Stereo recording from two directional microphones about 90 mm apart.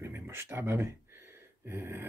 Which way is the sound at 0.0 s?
25° right (ahead or behind).